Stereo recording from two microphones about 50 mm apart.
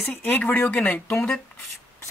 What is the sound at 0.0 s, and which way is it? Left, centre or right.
Speech, left.